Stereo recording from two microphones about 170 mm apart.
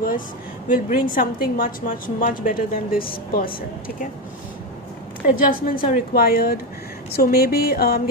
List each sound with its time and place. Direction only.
0.7 s a woman's voice: 55° left (ahead or behind)
5.3 s a woman's voice: 55° left (ahead or behind)